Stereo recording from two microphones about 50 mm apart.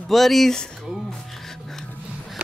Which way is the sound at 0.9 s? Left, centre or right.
Centre.